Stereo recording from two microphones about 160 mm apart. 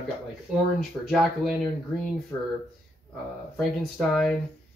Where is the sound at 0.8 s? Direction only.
Centre (ahead or behind).